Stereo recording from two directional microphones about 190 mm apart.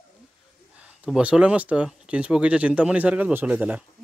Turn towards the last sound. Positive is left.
turn(degrees=-5)  # may be behind; listen again after turning